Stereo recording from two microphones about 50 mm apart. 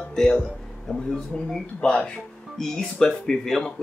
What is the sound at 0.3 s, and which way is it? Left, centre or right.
A man's voice, centre.